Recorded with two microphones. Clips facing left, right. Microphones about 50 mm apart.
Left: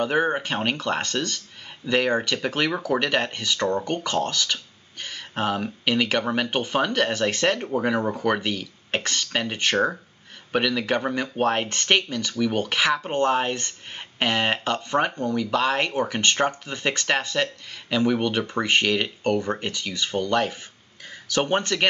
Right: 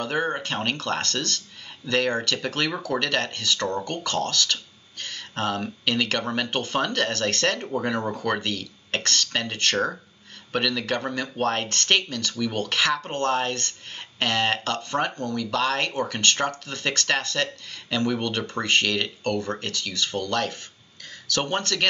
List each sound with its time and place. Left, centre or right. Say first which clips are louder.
0.0 s speech: left 4 dB; centre